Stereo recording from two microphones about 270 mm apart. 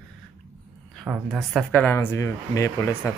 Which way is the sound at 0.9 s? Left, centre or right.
Centre.